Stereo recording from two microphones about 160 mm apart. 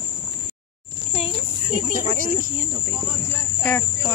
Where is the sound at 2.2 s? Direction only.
60° right (ahead or behind).